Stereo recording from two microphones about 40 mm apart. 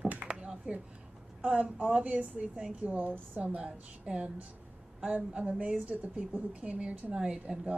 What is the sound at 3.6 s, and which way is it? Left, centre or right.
A woman's voice, right.